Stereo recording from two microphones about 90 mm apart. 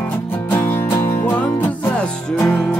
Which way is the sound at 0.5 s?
25° left (ahead or behind).